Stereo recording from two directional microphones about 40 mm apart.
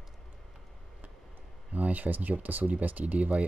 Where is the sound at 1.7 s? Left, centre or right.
Right.